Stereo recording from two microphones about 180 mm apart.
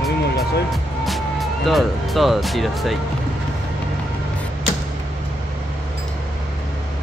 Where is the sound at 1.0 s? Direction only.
Centre (ahead or behind).